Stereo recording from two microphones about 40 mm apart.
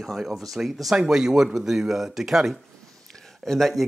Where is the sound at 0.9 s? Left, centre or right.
Centre.